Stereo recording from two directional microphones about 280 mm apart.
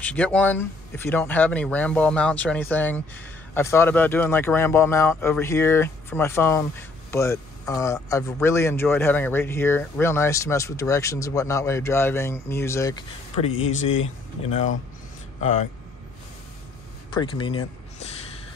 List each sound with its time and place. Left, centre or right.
0.0 s speech: centre
13.5 s speech: left
15.4 s speech: left
17.1 s speech: centre